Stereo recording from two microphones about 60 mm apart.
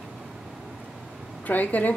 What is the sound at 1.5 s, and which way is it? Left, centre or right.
Speech, left.